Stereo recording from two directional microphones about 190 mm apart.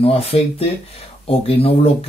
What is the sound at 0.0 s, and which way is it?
Speech, 30° left (ahead or behind).